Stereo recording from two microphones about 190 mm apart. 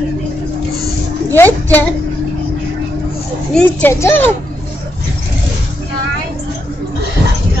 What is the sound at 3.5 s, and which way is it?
Speech, 10° left (ahead or behind).